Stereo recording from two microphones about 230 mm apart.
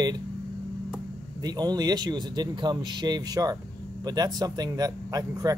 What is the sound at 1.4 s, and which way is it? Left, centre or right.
Speech, centre.